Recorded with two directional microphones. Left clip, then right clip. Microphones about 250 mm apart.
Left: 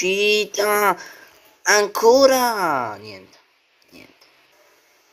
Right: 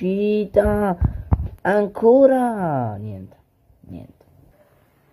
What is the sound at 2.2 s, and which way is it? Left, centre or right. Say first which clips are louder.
Speech: even; centre.